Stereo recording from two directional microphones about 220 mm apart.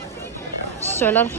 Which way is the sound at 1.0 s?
10° left (ahead or behind).